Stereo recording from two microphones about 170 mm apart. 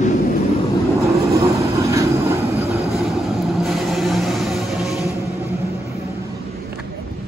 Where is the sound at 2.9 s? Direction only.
Centre (ahead or behind).